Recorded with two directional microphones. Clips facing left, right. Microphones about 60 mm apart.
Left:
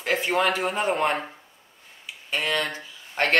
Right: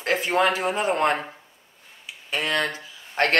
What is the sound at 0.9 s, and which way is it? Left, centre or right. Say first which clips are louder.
Speech: right 4 dB; centre.